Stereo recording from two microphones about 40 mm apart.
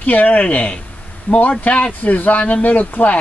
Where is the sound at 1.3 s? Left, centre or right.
Left.